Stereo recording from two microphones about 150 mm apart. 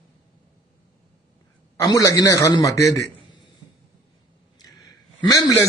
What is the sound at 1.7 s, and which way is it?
A man's voice, 20° left (ahead or behind).